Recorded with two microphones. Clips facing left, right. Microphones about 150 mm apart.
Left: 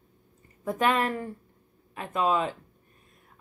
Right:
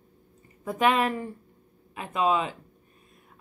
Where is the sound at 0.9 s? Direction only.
15° right (ahead or behind).